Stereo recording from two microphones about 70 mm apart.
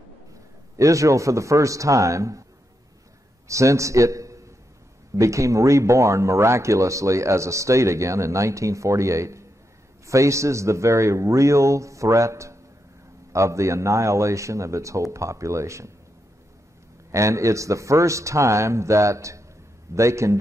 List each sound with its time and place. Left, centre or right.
0.7 s speech: right
3.4 s a man's voice: right
17.1 s speech: right